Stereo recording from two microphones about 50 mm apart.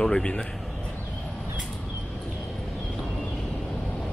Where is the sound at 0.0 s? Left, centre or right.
Centre.